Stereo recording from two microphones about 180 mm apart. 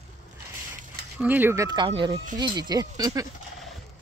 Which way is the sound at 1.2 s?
10° right (ahead or behind).